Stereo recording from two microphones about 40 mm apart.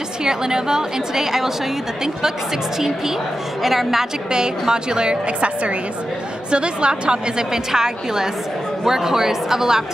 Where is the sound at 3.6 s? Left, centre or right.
Centre.